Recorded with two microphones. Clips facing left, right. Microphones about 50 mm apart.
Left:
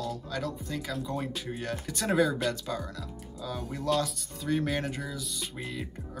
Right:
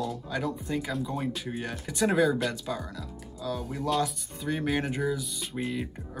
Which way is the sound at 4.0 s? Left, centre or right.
Centre.